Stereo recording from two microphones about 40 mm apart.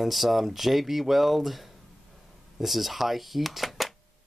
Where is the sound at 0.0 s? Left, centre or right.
Centre.